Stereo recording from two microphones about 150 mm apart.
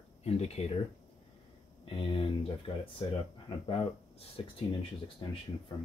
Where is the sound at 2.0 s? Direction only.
35° left (ahead or behind).